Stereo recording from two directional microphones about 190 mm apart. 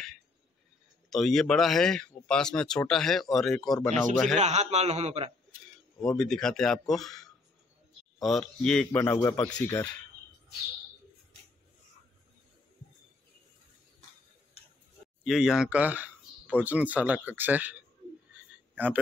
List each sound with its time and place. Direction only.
1.1 s speech: centre (ahead or behind)
4.4 s a man's voice: 35° right (ahead or behind)
6.0 s a man's voice: centre (ahead or behind)
15.2 s speech: centre (ahead or behind)